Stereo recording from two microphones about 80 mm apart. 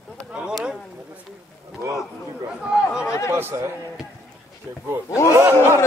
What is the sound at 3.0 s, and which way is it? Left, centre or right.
Chatter, left.